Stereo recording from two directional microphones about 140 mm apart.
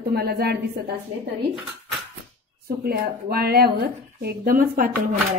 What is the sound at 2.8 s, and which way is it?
Speech, 90° right.